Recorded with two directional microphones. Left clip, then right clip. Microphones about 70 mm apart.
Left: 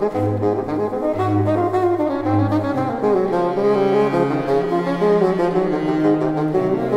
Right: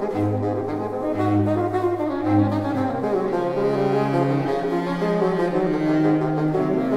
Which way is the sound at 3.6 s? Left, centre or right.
Right.